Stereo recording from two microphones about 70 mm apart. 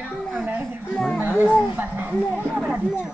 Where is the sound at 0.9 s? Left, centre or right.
Centre.